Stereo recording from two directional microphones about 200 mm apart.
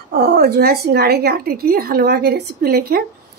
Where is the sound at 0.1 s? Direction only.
55° right (ahead or behind).